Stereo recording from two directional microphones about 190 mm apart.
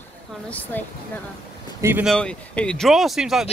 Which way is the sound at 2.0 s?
5° left (ahead or behind).